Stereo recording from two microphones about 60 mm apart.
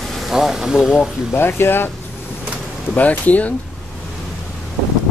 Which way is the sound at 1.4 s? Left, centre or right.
Left.